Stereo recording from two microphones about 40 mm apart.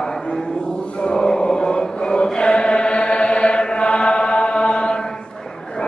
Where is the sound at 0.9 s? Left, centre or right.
Left.